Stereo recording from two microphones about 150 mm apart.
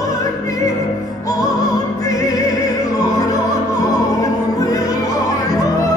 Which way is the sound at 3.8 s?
25° left (ahead or behind).